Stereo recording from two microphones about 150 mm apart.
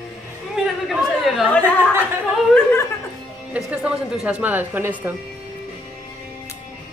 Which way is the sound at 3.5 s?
5° right (ahead or behind).